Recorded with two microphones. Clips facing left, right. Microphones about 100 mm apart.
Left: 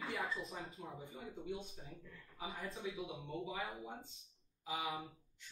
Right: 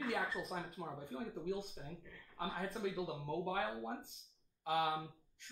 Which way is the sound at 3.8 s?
60° right (ahead or behind).